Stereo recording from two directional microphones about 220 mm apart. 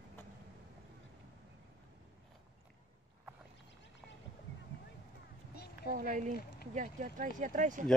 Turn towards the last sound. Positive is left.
turn(degrees=-35)  # may be behind; listen again after turning